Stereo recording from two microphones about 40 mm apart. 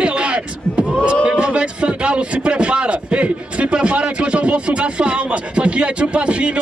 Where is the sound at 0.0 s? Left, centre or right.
Right.